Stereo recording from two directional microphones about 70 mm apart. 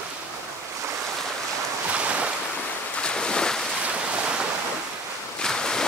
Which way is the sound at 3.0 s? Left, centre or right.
Centre.